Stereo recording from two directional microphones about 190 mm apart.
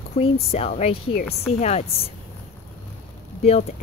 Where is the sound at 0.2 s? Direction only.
35° left (ahead or behind).